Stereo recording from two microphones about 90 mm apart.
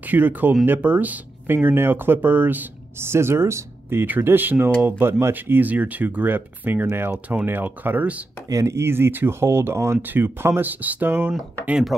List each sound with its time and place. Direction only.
0.0 s speech: 20° right (ahead or behind)
8.5 s speech: 35° right (ahead or behind)